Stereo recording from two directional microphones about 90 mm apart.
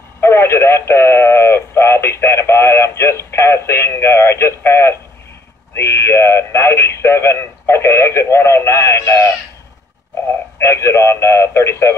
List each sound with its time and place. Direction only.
0.2 s speech: 30° left (ahead or behind)
10.6 s speech: 30° left (ahead or behind)